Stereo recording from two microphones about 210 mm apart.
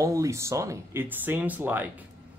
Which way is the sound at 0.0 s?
15° right (ahead or behind).